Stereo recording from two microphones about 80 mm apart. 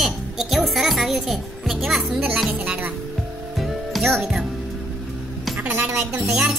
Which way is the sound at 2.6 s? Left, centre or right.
Right.